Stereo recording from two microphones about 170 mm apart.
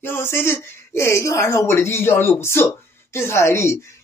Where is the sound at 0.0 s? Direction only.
15° left (ahead or behind).